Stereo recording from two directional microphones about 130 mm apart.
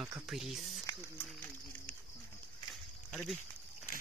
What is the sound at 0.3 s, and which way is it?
Speech, centre (ahead or behind).